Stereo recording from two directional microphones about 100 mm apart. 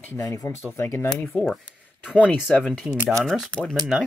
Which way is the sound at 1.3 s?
Centre (ahead or behind).